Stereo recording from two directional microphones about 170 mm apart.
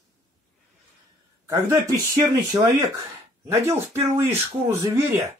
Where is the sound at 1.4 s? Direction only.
20° right (ahead or behind).